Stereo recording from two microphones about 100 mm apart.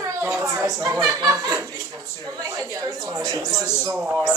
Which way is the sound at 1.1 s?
35° right (ahead or behind).